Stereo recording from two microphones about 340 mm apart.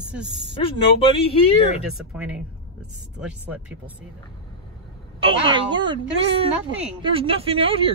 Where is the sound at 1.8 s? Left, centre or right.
Centre.